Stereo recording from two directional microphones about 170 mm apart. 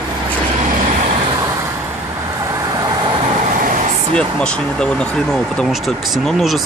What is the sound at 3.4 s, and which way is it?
Vehicle, 50° right (ahead or behind).